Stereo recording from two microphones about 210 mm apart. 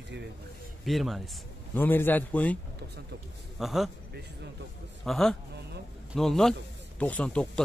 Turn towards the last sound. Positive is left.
turn(degrees=5)  # may be behind; listen again after turning